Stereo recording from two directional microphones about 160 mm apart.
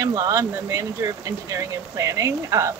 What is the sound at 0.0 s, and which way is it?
Speech, 20° right (ahead or behind).